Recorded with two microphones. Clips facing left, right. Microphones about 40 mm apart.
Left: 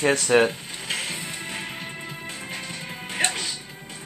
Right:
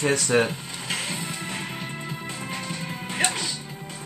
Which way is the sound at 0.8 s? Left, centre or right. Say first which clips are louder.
Even; centre.